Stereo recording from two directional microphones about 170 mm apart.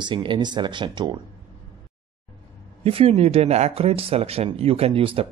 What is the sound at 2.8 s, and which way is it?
Speech, 35° right (ahead or behind).